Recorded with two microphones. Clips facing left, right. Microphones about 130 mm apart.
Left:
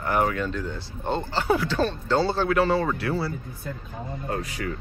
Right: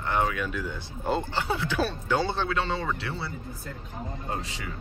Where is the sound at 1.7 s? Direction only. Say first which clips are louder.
Left 3 dB; 10° right (ahead or behind).